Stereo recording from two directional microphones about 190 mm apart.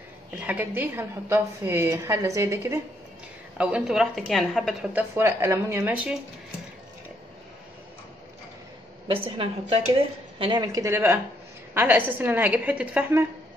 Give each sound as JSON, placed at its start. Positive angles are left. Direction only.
{"t": 0.4, "sound": "a woman's voice", "side_deg": -10}
{"t": 4.9, "sound": "a woman's voice", "side_deg": -10}
{"t": 9.0, "sound": "a woman's voice", "side_deg": -30}